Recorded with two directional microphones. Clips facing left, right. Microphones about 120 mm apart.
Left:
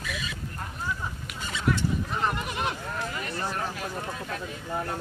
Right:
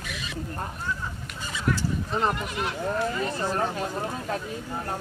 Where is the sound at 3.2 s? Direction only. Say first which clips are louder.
Right 5 dB; 30° right (ahead or behind).